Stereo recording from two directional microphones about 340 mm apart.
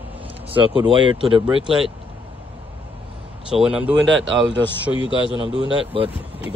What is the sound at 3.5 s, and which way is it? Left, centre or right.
Speech, centre.